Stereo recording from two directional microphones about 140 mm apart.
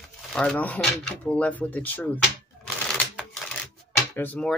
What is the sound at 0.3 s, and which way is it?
Speech, 5° left (ahead or behind).